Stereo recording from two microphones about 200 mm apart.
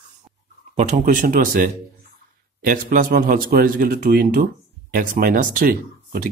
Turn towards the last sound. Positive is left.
turn(degrees=-45)  # may be behind; listen again after turning